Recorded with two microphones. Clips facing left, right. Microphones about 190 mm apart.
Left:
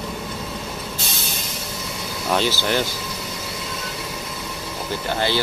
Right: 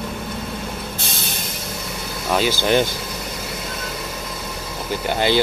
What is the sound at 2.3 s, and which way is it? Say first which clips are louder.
Speech: right 3 dB; 15° right (ahead or behind).